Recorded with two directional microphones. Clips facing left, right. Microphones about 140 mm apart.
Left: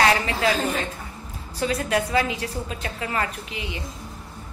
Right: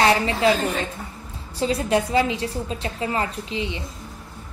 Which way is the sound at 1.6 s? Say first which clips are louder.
Right 2 dB; 30° right (ahead or behind).